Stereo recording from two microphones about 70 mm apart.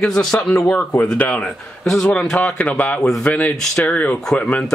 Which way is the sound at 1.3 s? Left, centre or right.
Centre.